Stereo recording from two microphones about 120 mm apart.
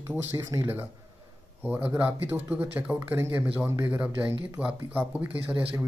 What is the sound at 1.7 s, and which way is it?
Speech, 15° right (ahead or behind).